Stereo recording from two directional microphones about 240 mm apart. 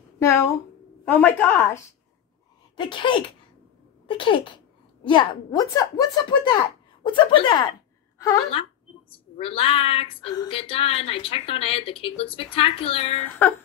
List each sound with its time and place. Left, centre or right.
0.2 s a woman's voice: centre
2.7 s a woman's voice: centre
9.1 s speech: left